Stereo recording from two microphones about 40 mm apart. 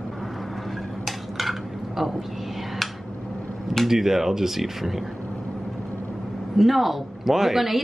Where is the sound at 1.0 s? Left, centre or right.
Centre.